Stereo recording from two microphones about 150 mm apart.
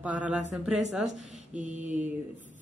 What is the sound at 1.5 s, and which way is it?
Mantra, 55° right (ahead or behind).